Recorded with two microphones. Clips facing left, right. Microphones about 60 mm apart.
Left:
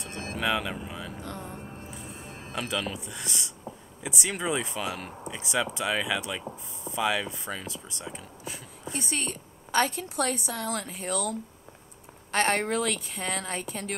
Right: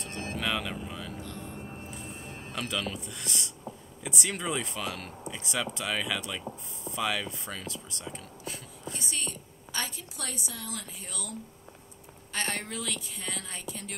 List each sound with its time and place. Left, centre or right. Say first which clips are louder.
0.0 s music: left 3 dB; centre
1.2 s music: left 3 dB; left
1.9 s speech: even; centre
8.9 s a woman's voice: left 6 dB; left